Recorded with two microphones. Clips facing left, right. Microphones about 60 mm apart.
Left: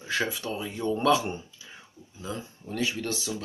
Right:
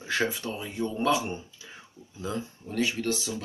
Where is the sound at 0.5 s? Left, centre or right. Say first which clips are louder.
Left 2 dB; centre.